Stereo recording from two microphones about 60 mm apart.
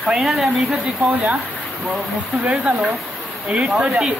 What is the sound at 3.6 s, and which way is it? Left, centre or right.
Speech, centre.